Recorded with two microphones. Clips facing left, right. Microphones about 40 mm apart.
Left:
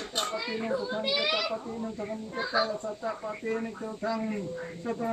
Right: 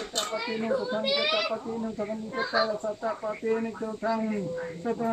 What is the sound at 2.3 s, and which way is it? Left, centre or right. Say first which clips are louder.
Speech: right 2 dB; right.